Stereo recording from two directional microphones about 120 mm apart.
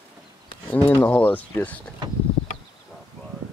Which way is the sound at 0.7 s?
15° left (ahead or behind).